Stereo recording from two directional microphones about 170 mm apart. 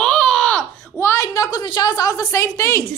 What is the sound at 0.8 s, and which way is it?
A woman's voice, 15° left (ahead or behind).